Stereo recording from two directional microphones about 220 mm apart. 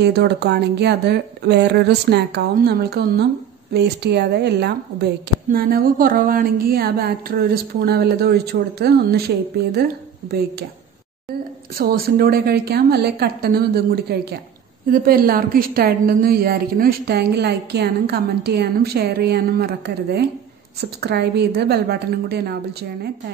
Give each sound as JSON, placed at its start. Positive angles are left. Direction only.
{"t": 0.0, "sound": "speech", "side_deg": -50}
{"t": 11.7, "sound": "speech", "side_deg": -40}